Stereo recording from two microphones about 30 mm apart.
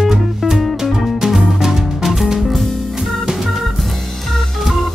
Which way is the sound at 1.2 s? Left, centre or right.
Centre.